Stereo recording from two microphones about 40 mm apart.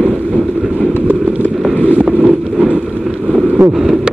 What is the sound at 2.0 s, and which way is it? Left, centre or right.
Vehicle, right.